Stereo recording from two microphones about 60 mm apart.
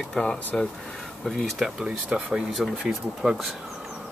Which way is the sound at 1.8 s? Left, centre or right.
Centre.